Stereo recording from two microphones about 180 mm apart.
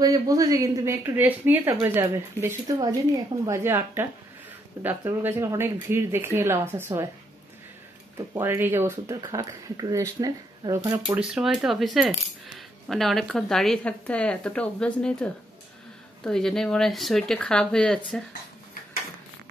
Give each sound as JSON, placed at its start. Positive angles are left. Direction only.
{"t": 0.0, "sound": "speech", "side_deg": -20}
{"t": 8.4, "sound": "speech", "side_deg": -15}
{"t": 11.2, "sound": "speech", "side_deg": 0}